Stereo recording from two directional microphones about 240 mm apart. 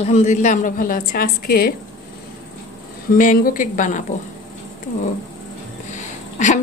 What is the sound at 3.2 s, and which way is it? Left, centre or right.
Speech, left.